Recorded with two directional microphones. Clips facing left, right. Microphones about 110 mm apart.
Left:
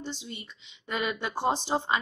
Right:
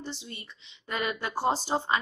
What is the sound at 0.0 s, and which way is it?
A woman's voice, 15° left (ahead or behind).